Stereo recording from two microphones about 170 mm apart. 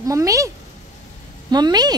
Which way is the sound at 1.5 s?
25° right (ahead or behind).